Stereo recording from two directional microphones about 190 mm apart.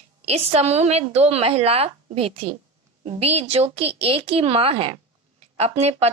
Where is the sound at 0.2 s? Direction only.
35° right (ahead or behind).